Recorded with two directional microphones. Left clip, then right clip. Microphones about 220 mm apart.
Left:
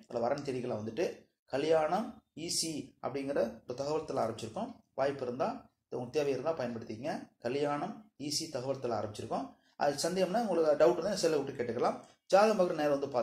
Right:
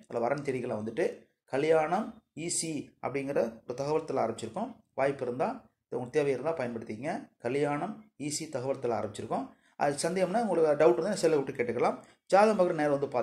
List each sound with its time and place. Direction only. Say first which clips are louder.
0.1 s speech: right 3 dB; 30° right (ahead or behind)